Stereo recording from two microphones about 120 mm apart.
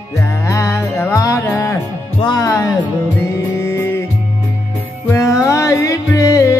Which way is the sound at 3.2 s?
20° left (ahead or behind).